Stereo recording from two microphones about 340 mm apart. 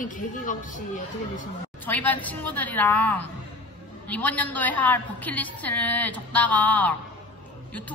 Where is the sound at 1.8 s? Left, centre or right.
Centre.